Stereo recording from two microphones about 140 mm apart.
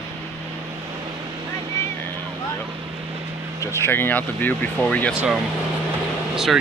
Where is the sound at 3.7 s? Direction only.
15° left (ahead or behind).